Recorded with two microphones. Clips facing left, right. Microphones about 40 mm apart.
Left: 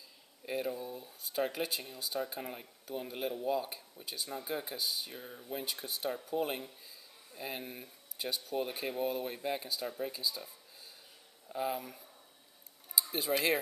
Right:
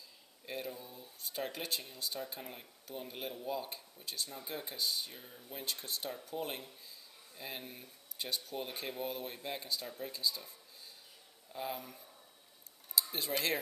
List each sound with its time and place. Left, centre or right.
0.5 s speech: centre
5.2 s speech: centre
5.5 s speech: centre
11.5 s speech: centre